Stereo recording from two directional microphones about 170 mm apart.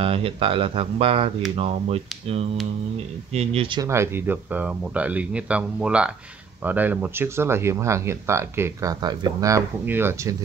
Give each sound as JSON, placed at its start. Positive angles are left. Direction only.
{"t": 0.0, "sound": "speech", "side_deg": -35}
{"t": 3.8, "sound": "speech", "side_deg": -15}